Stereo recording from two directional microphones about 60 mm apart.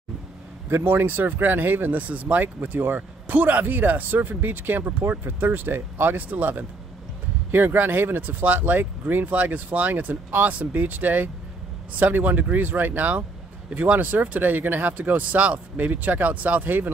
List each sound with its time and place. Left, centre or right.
0.7 s speech: right